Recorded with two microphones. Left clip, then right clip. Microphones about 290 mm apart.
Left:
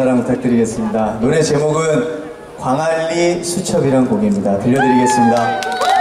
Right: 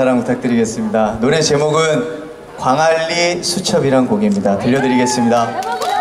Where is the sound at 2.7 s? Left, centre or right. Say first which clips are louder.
Right 3 dB; centre.